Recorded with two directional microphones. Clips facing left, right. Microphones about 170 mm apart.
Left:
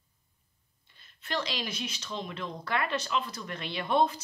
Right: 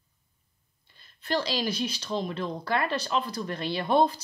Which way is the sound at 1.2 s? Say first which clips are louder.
Right 6 dB; 35° right (ahead or behind).